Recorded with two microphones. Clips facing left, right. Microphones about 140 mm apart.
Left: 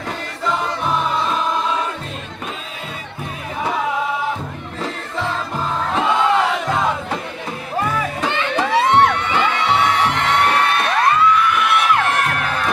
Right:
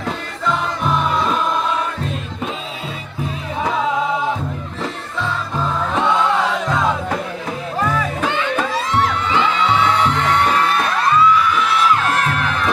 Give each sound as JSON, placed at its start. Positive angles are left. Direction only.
{"t": 8.7, "sound": "music", "side_deg": 65}